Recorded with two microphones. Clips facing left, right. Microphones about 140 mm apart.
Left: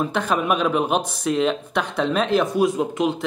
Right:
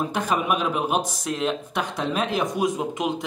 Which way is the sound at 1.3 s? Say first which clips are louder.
Left 5 dB; 5° right (ahead or behind).